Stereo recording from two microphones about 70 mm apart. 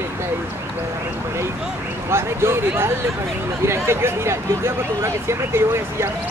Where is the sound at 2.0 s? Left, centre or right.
Right.